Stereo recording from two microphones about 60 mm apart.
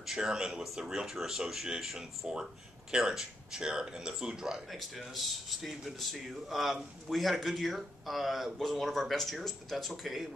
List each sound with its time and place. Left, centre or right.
0.0 s speech: centre
4.7 s speech: centre